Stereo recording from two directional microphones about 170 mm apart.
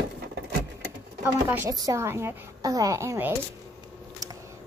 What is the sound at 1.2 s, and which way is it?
A woman's voice, 10° right (ahead or behind).